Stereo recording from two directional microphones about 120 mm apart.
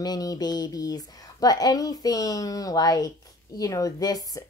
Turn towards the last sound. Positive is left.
turn(degrees=30)  # may be behind; listen again after turning